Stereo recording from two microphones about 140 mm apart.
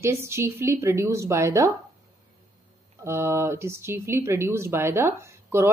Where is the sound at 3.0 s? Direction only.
20° right (ahead or behind).